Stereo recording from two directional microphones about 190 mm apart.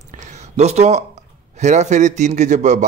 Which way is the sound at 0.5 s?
35° right (ahead or behind).